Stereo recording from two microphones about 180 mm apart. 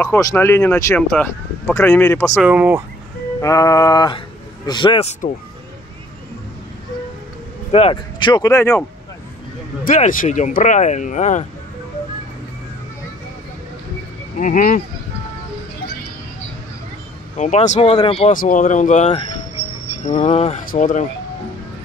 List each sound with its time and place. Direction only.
0.0 s speech: 15° left (ahead or behind)
2.3 s speech: 5° right (ahead or behind)
3.3 s speech: 20° left (ahead or behind)
7.7 s speech: 30° left (ahead or behind); by 8.8 s 15° left (ahead or behind)
9.8 s speech: 45° left (ahead or behind)
14.4 s speech: 45° left (ahead or behind)
17.4 s speech: 40° left (ahead or behind)
18.3 s speech: 50° left (ahead or behind)
20.7 s speech: 45° left (ahead or behind)